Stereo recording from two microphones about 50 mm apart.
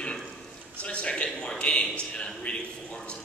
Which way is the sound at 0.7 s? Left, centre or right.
Left.